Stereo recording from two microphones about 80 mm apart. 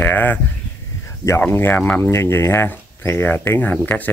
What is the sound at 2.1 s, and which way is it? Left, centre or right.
Speech, left.